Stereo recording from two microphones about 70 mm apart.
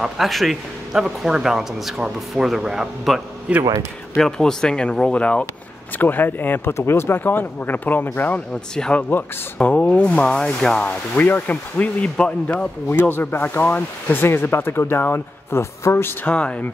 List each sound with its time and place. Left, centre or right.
0.0 s speech: centre
4.2 s speech: centre
5.9 s speech: left
8.7 s speech: centre
10.9 s speech: left
12.9 s speech: left
16.3 s speech: centre